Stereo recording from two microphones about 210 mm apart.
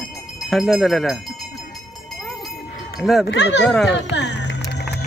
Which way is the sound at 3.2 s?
55° left (ahead or behind).